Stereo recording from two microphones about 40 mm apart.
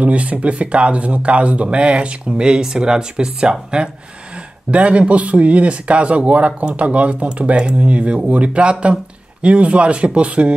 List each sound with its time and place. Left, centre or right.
0.0 s speech: right
4.6 s a man's voice: right